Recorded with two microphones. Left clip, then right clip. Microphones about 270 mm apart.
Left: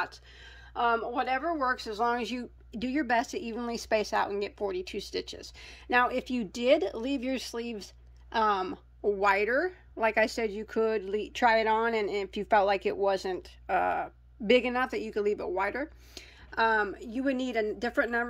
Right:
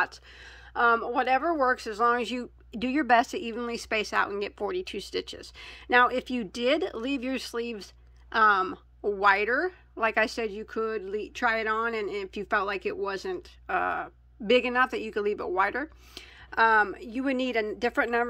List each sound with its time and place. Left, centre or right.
0.7 s a woman's voice: centre